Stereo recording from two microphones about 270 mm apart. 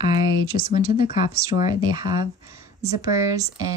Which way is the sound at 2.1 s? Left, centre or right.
Left.